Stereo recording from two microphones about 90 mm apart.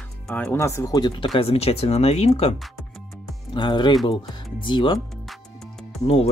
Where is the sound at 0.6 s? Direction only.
35° left (ahead or behind).